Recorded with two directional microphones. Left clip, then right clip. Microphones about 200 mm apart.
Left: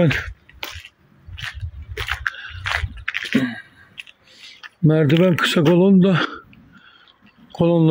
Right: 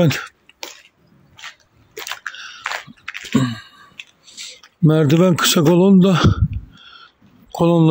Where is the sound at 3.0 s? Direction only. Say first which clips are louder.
Left 6 dB; 5° left (ahead or behind).